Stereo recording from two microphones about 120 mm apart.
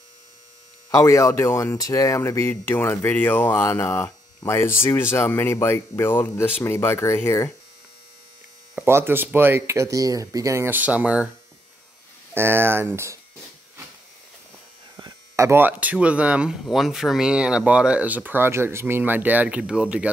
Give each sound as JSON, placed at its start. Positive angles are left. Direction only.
{"t": 0.9, "sound": "speech", "side_deg": 25}
{"t": 8.7, "sound": "speech", "side_deg": -20}
{"t": 12.4, "sound": "speech", "side_deg": -20}
{"t": 15.0, "sound": "speech", "side_deg": -30}